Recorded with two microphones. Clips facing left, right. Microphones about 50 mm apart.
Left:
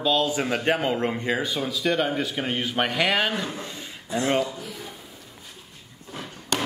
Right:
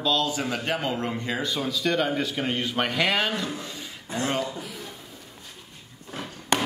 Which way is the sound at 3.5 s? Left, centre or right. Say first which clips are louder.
Left 1 dB; left.